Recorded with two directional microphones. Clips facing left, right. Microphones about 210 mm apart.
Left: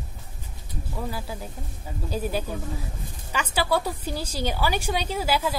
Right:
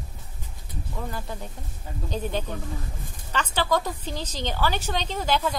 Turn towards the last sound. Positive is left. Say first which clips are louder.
# even
turn(degrees=5)  # may be behind; listen again after turning